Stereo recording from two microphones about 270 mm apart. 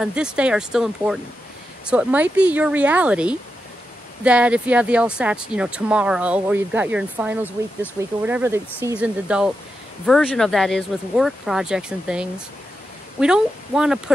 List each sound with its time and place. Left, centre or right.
0.0 s speech: centre